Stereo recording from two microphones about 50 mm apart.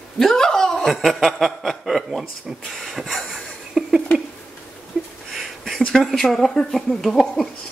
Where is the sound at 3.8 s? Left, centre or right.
Centre.